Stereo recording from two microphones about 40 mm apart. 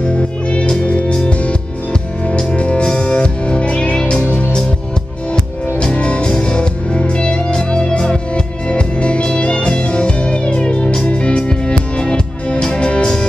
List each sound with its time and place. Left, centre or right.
0.0 s music: left
4.3 s music: left
5.8 s music: left